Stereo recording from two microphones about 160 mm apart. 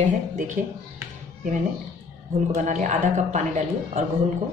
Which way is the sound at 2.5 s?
50° right (ahead or behind).